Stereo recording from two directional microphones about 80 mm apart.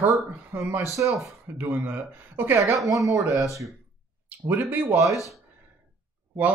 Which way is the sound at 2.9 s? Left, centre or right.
Right.